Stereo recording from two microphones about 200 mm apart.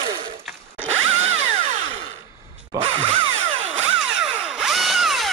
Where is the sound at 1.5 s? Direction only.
35° right (ahead or behind).